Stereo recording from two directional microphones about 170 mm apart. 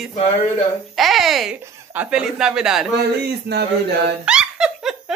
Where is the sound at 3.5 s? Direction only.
75° right (ahead or behind).